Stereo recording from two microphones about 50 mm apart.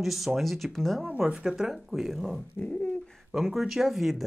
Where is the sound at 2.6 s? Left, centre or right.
Left.